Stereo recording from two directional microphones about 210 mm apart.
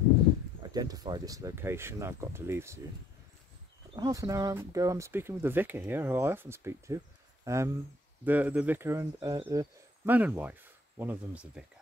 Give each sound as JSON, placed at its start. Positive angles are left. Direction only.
{"t": 0.7, "sound": "speech", "side_deg": -20}
{"t": 3.9, "sound": "speech", "side_deg": -15}